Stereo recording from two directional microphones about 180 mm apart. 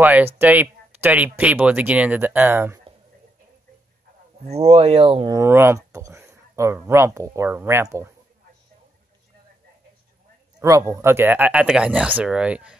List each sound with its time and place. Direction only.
0.0 s speech: 10° right (ahead or behind)
4.5 s speech: 35° right (ahead or behind); by 8.1 s 15° right (ahead or behind)
10.6 s speech: 15° right (ahead or behind)